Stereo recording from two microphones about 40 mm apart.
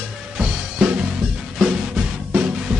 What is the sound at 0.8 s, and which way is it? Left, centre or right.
Music, centre.